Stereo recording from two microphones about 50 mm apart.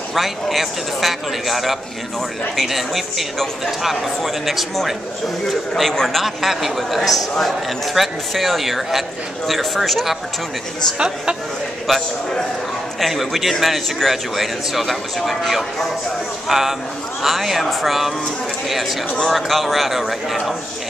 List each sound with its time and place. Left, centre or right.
0.1 s a man's voice: centre
6.2 s a man's voice: centre
11.0 s a woman's voice: centre
11.9 s a man's voice: centre